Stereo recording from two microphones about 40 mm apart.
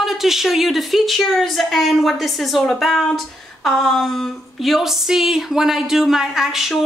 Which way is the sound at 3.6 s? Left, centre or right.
Centre.